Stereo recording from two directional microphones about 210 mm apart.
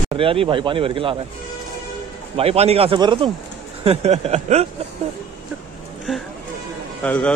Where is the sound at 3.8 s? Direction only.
30° right (ahead or behind).